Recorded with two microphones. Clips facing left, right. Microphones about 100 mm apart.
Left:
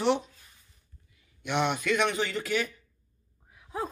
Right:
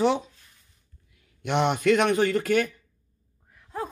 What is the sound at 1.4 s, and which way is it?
A man's voice, 50° right (ahead or behind).